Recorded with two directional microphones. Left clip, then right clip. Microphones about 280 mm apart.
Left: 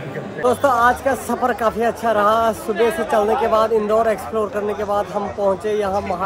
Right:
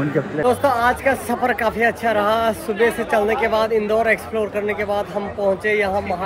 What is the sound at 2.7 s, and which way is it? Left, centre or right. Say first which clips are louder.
Speech: right 1 dB; left.